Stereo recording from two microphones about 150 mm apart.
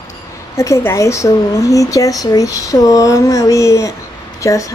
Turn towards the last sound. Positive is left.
turn(degrees=20)  # may be behind; listen again after turning